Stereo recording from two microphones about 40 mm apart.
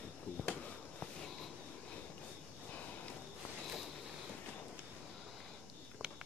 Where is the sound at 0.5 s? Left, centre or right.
Left.